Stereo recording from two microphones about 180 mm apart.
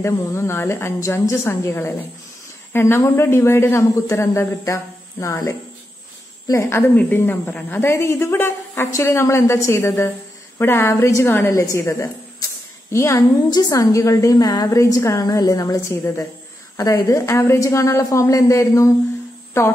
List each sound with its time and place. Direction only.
0.0 s a woman's voice: 15° left (ahead or behind)